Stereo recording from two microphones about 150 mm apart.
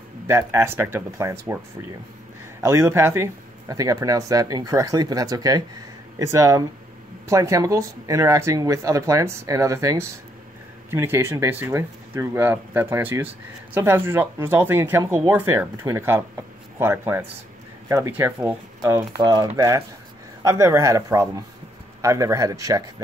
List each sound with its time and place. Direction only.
0.3 s speech: 20° right (ahead or behind)
2.6 s speech: 20° right (ahead or behind)